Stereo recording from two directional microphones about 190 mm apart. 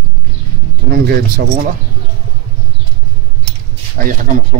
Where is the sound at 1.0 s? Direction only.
50° right (ahead or behind).